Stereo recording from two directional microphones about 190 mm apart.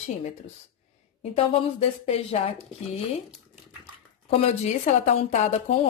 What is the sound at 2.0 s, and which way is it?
Speech, 30° left (ahead or behind).